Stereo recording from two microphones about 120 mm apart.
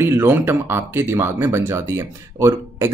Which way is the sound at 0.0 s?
20° right (ahead or behind).